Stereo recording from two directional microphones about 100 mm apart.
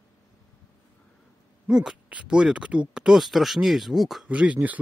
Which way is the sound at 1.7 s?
5° right (ahead or behind).